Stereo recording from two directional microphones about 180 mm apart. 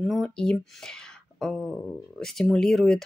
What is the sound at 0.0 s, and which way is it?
Speech, centre (ahead or behind).